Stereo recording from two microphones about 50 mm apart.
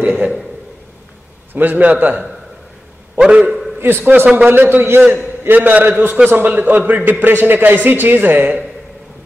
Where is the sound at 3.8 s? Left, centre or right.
Right.